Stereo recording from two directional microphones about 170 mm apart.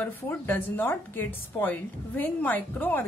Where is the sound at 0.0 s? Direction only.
10° left (ahead or behind).